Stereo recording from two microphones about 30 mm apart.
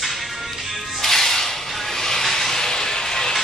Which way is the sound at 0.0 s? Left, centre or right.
Centre.